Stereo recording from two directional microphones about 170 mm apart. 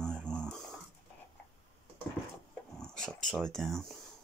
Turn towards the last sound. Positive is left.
turn(degrees=0)  # may be behind; listen again after turning